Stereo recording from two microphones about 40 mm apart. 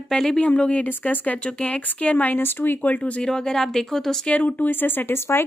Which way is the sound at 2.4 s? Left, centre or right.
Left.